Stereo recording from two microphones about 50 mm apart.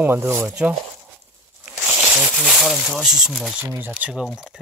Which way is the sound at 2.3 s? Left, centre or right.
Centre.